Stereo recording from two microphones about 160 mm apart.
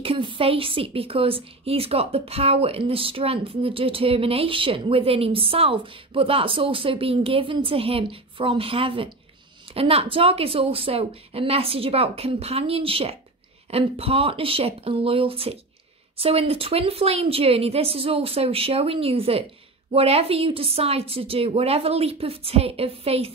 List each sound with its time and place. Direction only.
0.0 s a woman's voice: 35° right (ahead or behind)